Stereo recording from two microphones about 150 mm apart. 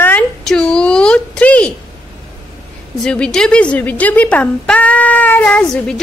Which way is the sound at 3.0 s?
5° left (ahead or behind).